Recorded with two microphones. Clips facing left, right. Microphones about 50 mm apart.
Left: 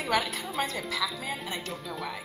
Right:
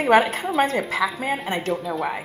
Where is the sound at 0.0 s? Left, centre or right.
Right.